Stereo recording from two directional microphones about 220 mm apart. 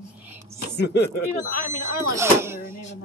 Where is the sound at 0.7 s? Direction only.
50° left (ahead or behind).